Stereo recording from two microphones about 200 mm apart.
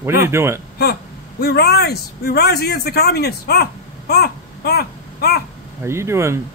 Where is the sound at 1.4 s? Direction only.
50° left (ahead or behind).